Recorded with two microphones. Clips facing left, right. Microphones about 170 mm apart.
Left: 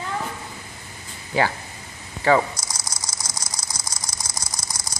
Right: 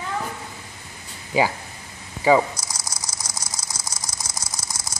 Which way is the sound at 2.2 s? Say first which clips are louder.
Right 1 dB; 10° right (ahead or behind).